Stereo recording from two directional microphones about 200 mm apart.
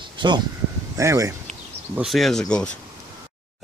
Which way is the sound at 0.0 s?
25° right (ahead or behind).